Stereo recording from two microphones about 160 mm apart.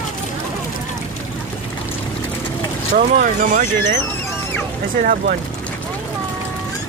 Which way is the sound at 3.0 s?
55° right (ahead or behind).